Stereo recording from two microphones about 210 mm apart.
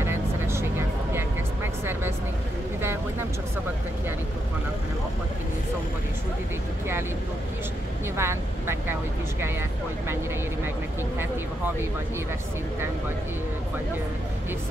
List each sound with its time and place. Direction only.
0.0 s music: 10° right (ahead or behind)
2.8 s a sound: 10° right (ahead or behind)
8.2 s speech: 10° right (ahead or behind)